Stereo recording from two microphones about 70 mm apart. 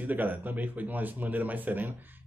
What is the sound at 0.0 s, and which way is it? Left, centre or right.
Speech, right.